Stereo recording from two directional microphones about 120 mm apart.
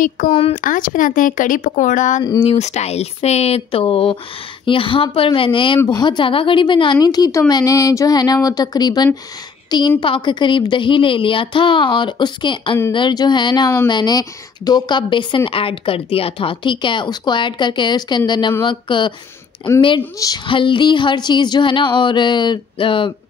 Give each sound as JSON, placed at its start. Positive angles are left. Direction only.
{"t": 0.3, "sound": "a woman's voice", "side_deg": 50}
{"t": 0.6, "sound": "speech", "side_deg": 90}
{"t": 2.4, "sound": "speech", "side_deg": 70}
{"t": 3.8, "sound": "a woman's voice", "side_deg": 45}
{"t": 20.4, "sound": "speech", "side_deg": 45}